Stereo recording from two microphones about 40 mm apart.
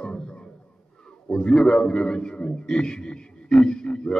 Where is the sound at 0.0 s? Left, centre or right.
Left.